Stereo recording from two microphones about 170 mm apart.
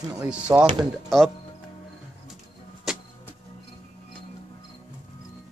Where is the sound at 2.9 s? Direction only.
Centre (ahead or behind).